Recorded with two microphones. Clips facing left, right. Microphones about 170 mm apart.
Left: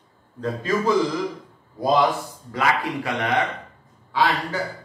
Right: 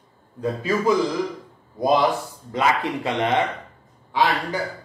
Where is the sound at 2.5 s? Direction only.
25° right (ahead or behind).